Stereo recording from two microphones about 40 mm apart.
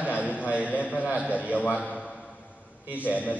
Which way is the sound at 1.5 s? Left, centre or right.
Left.